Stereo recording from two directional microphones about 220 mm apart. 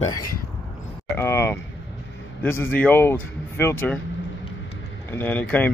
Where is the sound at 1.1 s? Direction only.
10° left (ahead or behind).